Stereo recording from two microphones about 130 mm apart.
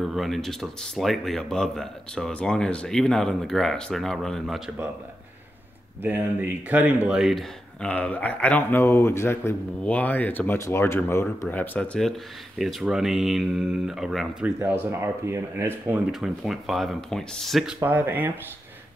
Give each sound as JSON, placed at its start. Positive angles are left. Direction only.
{"t": 0.0, "sound": "speech", "side_deg": 0}
{"t": 6.0, "sound": "speech", "side_deg": -15}
{"t": 14.6, "sound": "speech", "side_deg": -20}
{"t": 16.1, "sound": "speech", "side_deg": 0}
{"t": 17.8, "sound": "speech", "side_deg": -15}